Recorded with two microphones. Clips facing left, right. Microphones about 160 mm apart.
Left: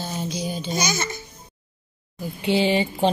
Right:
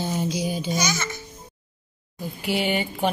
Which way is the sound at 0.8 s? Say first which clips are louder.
Left 1 dB; 30° left (ahead or behind).